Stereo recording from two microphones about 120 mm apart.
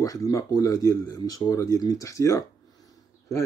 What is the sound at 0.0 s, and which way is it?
Speech, 30° left (ahead or behind).